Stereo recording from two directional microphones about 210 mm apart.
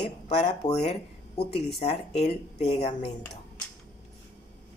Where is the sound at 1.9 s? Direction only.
30° left (ahead or behind).